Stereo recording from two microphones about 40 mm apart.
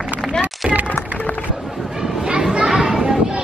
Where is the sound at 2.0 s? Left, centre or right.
Centre.